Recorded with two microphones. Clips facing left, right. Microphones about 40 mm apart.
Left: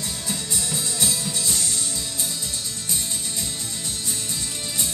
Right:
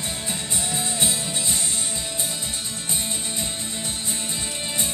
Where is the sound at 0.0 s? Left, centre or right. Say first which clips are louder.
Right 1 dB; right.